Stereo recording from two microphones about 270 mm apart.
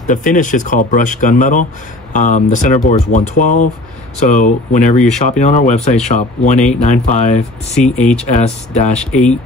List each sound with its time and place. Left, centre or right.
0.0 s speech: left